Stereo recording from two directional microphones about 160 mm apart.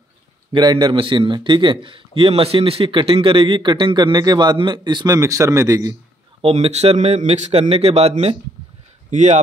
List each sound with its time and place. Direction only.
0.5 s a man's voice: 30° right (ahead or behind)
6.4 s speech: 40° right (ahead or behind)
9.1 s speech: 50° right (ahead or behind)